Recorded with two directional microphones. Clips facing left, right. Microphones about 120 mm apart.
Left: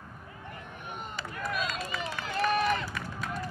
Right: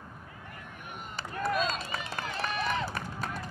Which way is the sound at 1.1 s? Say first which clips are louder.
Right 5 dB; 30° right (ahead or behind).